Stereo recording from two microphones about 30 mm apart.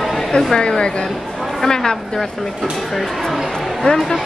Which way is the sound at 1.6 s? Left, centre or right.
Centre.